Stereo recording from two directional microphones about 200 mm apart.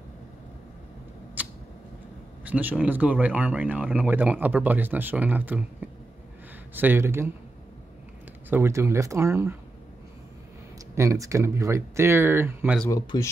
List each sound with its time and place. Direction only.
2.4 s speech: 5° right (ahead or behind)
8.5 s speech: 10° right (ahead or behind)
11.0 s speech: 15° right (ahead or behind)
12.9 s speech: 15° left (ahead or behind)